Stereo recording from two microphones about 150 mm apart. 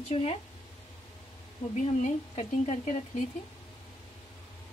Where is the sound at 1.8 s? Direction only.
50° left (ahead or behind).